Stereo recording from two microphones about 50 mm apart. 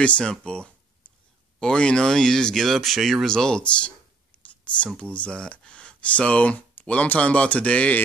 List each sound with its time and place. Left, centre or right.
0.0 s speech: left
1.0 s a sound: left
1.6 s speech: centre
3.3 s speech: centre
4.5 s a sound: left
4.9 s speech: left